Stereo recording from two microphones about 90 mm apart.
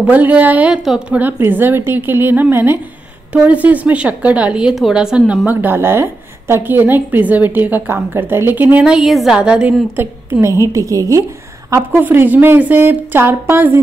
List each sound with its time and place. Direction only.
0.0 s a woman's voice: 15° right (ahead or behind)
1.2 s a woman's voice: 20° right (ahead or behind)
10.7 s a woman's voice: 35° right (ahead or behind)
11.9 s a woman's voice: 20° right (ahead or behind)